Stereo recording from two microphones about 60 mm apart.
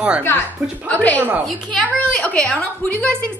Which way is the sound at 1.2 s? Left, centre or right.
Right.